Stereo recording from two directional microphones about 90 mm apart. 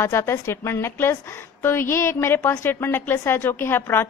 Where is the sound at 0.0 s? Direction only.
30° left (ahead or behind).